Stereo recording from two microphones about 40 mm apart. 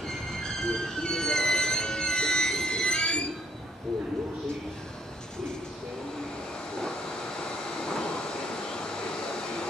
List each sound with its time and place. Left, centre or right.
0.4 s music: centre
6.8 s vehicle: left